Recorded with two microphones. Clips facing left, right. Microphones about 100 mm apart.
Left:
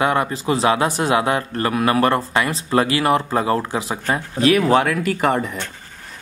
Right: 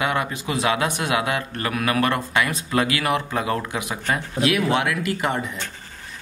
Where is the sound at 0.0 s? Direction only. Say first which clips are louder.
Left 5 dB; 35° left (ahead or behind).